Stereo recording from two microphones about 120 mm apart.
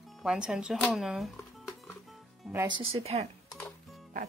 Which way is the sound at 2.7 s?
55° right (ahead or behind).